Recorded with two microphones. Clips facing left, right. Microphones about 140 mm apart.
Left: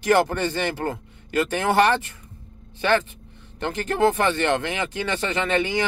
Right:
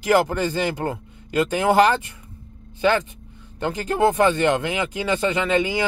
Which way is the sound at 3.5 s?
10° right (ahead or behind).